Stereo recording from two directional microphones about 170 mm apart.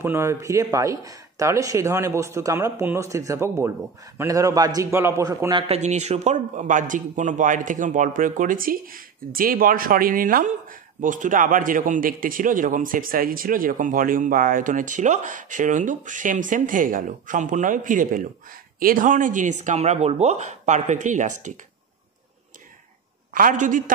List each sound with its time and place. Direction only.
0.0 s speech: 15° right (ahead or behind)
5.5 s a man's voice: 30° right (ahead or behind)
5.8 s a man's voice: 40° right (ahead or behind)
23.3 s a man's voice: 50° right (ahead or behind)